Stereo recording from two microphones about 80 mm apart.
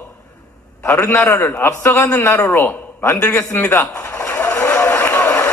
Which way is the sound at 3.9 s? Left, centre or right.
Centre.